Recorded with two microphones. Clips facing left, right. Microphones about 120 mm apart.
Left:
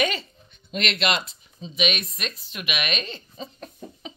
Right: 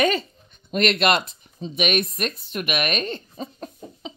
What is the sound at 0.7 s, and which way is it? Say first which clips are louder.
Speech: right 6 dB; 50° right (ahead or behind).